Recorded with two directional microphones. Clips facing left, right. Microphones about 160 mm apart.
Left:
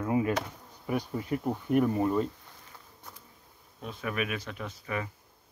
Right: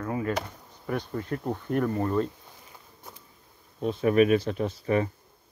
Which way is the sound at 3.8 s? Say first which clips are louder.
Right 12 dB; 30° right (ahead or behind).